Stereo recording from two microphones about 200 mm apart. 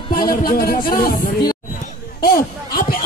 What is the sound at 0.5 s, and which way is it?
Speech, 45° left (ahead or behind).